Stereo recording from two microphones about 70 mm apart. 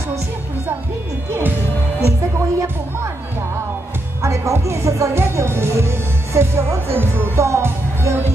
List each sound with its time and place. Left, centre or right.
2.0 s music: right
4.2 s music: right